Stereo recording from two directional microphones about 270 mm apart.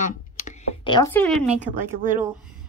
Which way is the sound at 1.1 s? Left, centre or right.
Centre.